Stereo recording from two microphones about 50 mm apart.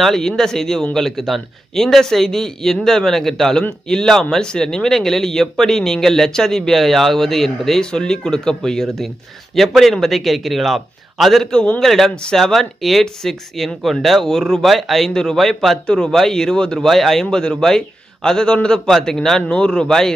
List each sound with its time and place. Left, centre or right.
0.0 s speech: centre
7.8 s speech: centre
16.8 s speech: centre